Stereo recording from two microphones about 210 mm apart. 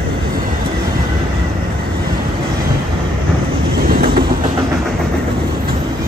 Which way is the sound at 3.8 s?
45° right (ahead or behind).